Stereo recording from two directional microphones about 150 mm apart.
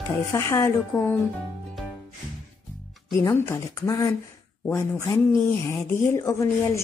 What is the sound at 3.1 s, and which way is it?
Speech, 20° left (ahead or behind).